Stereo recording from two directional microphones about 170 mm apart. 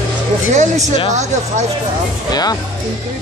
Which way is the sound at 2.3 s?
25° left (ahead or behind).